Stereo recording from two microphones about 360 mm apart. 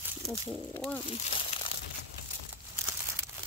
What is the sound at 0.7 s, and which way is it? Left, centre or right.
Speech, centre.